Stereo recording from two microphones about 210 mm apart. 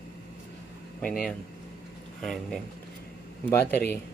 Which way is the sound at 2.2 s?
Centre (ahead or behind).